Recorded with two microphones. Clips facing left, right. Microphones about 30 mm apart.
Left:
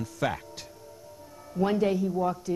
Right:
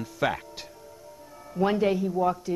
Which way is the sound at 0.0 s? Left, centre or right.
Centre.